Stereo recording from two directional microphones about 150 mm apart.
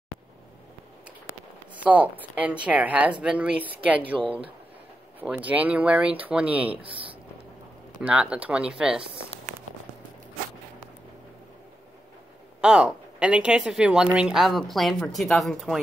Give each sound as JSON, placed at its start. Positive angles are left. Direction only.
{"t": 1.8, "sound": "speech", "side_deg": -10}
{"t": 4.0, "sound": "speech", "side_deg": -35}
{"t": 5.2, "sound": "speech", "side_deg": -10}
{"t": 6.8, "sound": "speech", "side_deg": -35}
{"t": 8.0, "sound": "speech", "side_deg": -5}
{"t": 12.5, "sound": "speech", "side_deg": -5}